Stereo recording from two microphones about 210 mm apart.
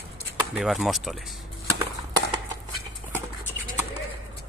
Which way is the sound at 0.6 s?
Centre (ahead or behind).